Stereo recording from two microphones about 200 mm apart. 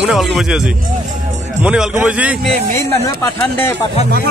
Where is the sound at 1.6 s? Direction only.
5° right (ahead or behind).